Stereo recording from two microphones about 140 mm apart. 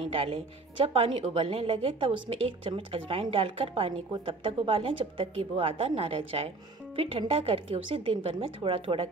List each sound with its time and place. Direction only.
0.1 s a woman's voice: 40° right (ahead or behind)